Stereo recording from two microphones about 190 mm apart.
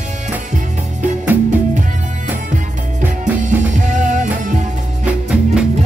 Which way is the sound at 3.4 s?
40° right (ahead or behind).